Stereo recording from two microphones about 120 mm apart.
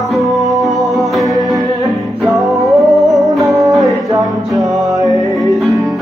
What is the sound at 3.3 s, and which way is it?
Music, 25° right (ahead or behind).